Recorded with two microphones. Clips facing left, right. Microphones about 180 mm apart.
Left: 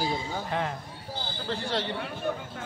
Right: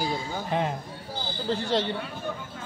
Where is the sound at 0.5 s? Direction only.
20° right (ahead or behind).